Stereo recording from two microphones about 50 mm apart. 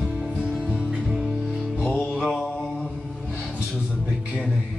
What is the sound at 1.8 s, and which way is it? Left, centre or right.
Music, left.